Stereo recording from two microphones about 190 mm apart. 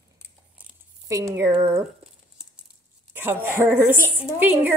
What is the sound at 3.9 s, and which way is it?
Speech, 10° left (ahead or behind).